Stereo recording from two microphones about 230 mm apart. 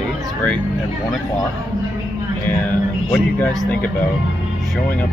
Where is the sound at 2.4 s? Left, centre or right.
Centre.